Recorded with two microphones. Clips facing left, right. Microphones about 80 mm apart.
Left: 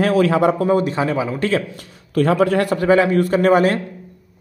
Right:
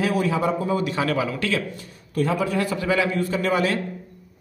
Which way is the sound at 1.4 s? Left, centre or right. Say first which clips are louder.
Left 6 dB; left.